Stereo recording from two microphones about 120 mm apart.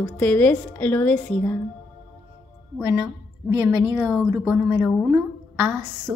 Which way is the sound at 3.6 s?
15° right (ahead or behind).